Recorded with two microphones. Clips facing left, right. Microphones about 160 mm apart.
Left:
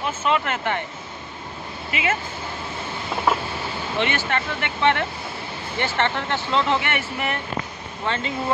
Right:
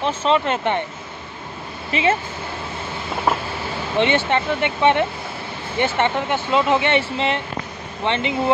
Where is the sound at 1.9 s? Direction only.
30° right (ahead or behind).